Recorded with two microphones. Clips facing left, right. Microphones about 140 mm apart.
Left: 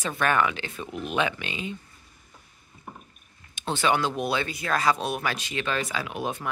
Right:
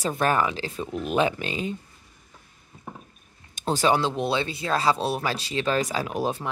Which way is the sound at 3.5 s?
40° right (ahead or behind).